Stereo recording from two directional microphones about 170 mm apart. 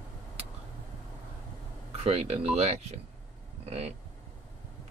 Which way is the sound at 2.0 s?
35° right (ahead or behind).